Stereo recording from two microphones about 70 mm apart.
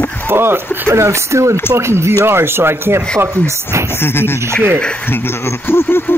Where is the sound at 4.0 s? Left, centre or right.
Left.